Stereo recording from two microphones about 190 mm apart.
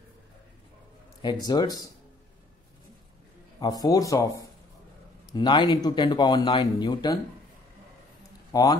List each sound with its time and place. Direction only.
1.5 s speech: 20° left (ahead or behind)
3.5 s speech: 20° left (ahead or behind)
8.5 s speech: 20° left (ahead or behind)